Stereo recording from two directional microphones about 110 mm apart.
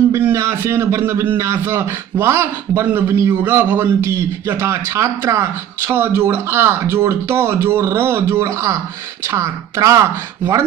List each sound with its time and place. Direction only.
0.1 s a man's voice: 25° right (ahead or behind)